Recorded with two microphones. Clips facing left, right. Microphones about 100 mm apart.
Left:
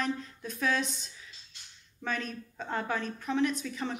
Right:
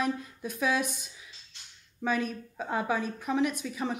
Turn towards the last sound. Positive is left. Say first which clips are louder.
# right 1 dB
turn(degrees=-10)  # may be behind; listen again after turning